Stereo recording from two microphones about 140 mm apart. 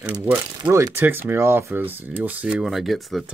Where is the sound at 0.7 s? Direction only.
20° right (ahead or behind).